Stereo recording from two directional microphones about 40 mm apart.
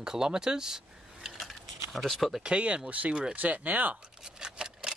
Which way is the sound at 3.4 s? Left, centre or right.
Right.